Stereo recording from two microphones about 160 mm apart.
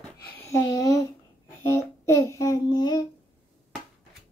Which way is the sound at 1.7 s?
15° left (ahead or behind).